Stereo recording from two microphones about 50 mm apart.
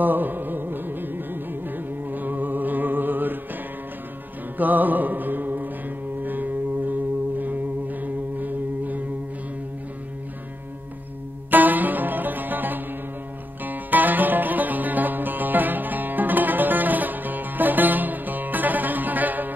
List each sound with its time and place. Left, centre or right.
0.0 s music: right
4.6 s music: right
11.5 s music: right